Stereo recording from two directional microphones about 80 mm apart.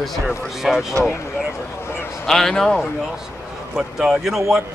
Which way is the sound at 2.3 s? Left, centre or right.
Centre.